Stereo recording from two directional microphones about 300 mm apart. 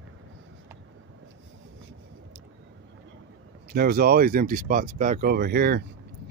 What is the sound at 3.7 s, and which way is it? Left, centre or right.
Speech, right.